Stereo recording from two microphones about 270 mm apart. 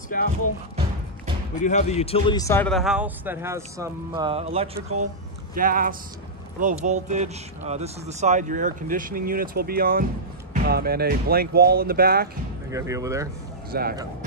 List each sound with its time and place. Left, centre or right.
0.1 s speech: left
1.6 s speech: left; by 12.3 s right
12.7 s speech: centre
13.7 s speech: right